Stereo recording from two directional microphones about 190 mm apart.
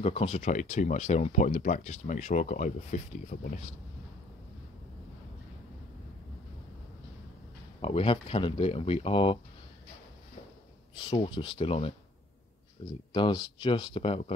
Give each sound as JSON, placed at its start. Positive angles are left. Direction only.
{"t": 0.0, "sound": "speech", "side_deg": 30}
{"t": 7.8, "sound": "speech", "side_deg": 30}
{"t": 11.1, "sound": "speech", "side_deg": 25}